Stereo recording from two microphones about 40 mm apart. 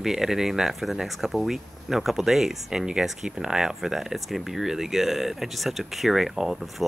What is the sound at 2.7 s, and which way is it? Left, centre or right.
Speech, centre.